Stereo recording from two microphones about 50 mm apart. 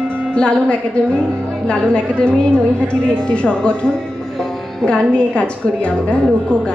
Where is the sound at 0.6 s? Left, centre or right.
Left.